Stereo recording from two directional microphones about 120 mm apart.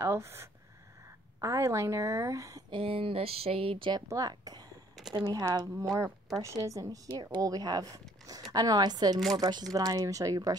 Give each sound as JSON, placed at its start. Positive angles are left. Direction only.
{"t": 0.0, "sound": "a woman's voice", "side_deg": -20}
{"t": 2.7, "sound": "speech", "side_deg": -50}
{"t": 4.1, "sound": "speech", "side_deg": -30}
{"t": 4.9, "sound": "a sound", "side_deg": -5}
{"t": 5.2, "sound": "a woman's voice", "side_deg": -30}